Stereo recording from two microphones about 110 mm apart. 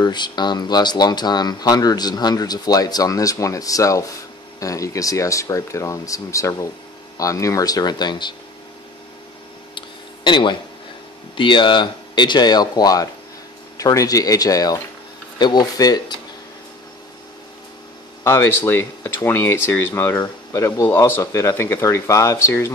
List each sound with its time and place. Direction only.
0.0 s speech: 40° left (ahead or behind)
9.8 s a sound: 45° left (ahead or behind)
11.3 s speech: 50° left (ahead or behind)
18.2 s speech: 20° left (ahead or behind)